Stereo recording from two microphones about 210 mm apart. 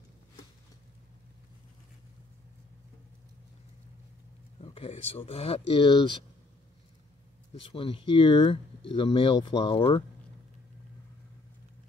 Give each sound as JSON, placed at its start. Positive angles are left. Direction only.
{"t": 4.6, "sound": "speech", "side_deg": 30}
{"t": 7.6, "sound": "speech", "side_deg": 25}